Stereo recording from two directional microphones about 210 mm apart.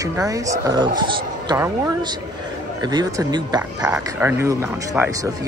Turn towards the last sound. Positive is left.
turn(degrees=-10)  # may be behind; listen again after turning